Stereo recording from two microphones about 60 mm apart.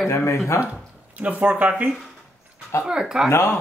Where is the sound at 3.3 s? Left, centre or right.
Left.